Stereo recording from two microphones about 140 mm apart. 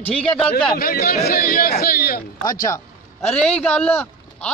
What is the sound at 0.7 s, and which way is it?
Speech, 90° left.